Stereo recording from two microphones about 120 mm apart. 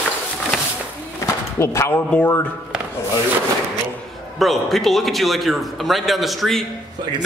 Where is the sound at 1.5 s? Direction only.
25° left (ahead or behind).